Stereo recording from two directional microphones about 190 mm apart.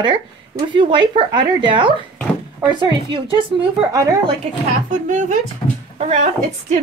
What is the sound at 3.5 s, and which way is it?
Speech, centre (ahead or behind).